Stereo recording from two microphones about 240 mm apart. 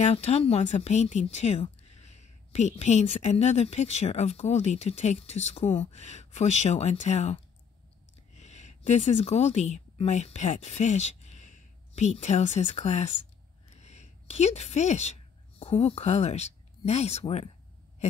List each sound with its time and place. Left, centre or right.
0.0 s speech: left
8.4 s a woman's voice: left
13.7 s a sound: left
15.6 s speech: left